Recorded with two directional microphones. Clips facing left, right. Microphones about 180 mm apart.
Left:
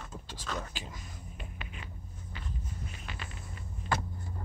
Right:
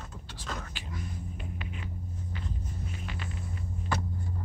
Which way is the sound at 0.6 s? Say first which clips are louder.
Right 1 dB; 25° left (ahead or behind).